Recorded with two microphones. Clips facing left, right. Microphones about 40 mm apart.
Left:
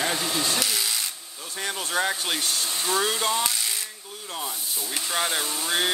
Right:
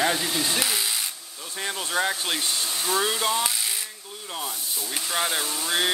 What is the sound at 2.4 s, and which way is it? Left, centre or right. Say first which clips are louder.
Speech: even; centre.